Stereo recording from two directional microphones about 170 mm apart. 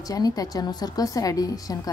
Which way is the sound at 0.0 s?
20° left (ahead or behind).